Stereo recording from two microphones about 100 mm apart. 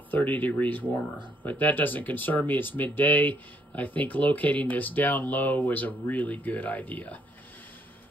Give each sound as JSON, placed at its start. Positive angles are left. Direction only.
{"t": 0.1, "sound": "speech", "side_deg": 15}